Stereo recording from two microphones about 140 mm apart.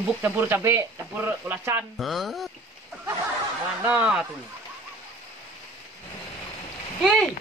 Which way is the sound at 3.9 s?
15° right (ahead or behind).